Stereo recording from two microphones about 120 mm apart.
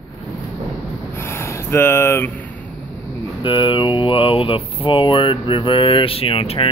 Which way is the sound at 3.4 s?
45° left (ahead or behind).